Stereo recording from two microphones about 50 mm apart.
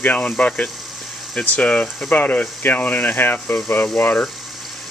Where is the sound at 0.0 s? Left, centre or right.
Left.